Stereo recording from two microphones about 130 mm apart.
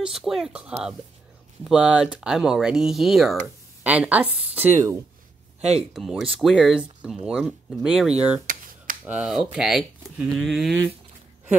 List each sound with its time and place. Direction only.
0.0 s a woman's voice: centre (ahead or behind)
5.6 s speech: 60° right (ahead or behind)
5.9 s speech: centre (ahead or behind)